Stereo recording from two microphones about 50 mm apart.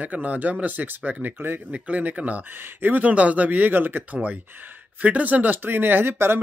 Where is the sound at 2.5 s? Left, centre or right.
Right.